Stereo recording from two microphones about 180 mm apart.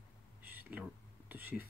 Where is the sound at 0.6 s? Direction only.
10° right (ahead or behind).